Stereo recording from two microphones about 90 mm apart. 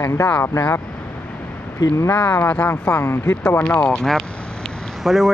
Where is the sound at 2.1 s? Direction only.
20° left (ahead or behind).